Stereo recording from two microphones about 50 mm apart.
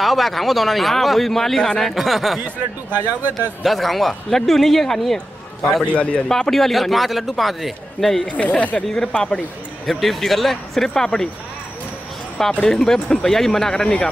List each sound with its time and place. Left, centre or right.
0.0 s speech: centre
2.0 s speech: centre
2.4 s speech: right
3.6 s speech: centre
5.9 s speech: left
6.2 s speech: centre
8.3 s speech: left
8.8 s speech: centre
9.8 s speech: centre
12.6 s speech: centre